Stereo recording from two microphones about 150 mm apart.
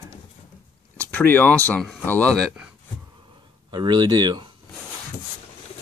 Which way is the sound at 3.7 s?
30° right (ahead or behind).